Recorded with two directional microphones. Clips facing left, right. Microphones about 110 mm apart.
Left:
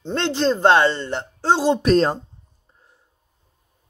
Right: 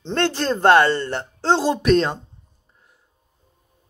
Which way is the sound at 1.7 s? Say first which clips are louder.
Left 1 dB; 35° left (ahead or behind).